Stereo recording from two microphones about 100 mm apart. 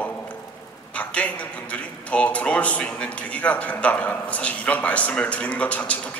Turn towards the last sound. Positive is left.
turn(degrees=15)  # may be behind; listen again after turning